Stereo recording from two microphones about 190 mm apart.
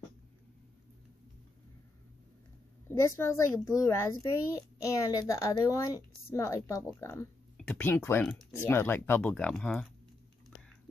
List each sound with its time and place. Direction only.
2.9 s a child's voice: 15° left (ahead or behind)